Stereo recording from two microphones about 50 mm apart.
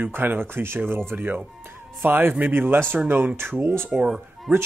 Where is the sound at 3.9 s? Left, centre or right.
Right.